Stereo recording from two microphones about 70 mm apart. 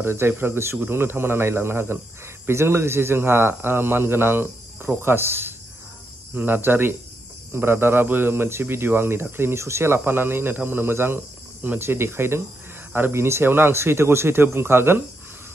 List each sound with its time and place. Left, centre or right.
0.0 s speech: right